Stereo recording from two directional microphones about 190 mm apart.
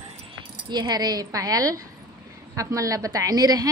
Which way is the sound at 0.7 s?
20° right (ahead or behind).